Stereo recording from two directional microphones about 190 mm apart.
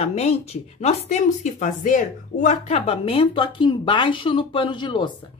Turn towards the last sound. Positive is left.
turn(degrees=25)  # may be behind; listen again after turning